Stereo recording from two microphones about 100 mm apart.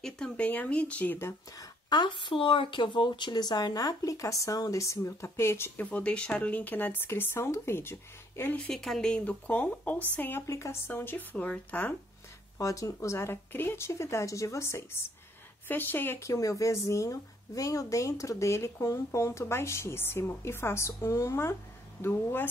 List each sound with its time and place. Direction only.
0.0 s speech: 5° left (ahead or behind)
1.6 s speech: 45° left (ahead or behind); by 8.5 s 25° left (ahead or behind)
8.6 s speech: 5° left (ahead or behind)
12.5 s speech: 35° left (ahead or behind)